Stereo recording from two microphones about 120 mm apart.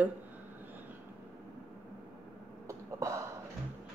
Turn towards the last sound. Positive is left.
turn(degrees=-25)  # may be behind; listen again after turning